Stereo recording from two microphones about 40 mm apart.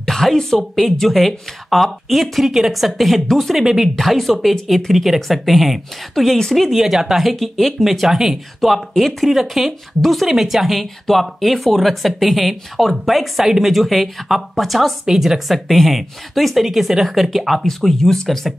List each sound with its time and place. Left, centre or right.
0.0 s speech: centre
3.5 s speech: centre
3.9 s speech: centre
8.5 s speech: centre